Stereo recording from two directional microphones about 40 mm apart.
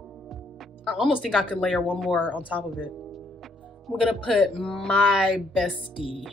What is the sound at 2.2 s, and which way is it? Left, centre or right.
Speech, right.